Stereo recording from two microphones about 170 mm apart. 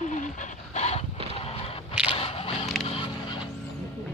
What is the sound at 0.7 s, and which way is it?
Dog, 40° left (ahead or behind).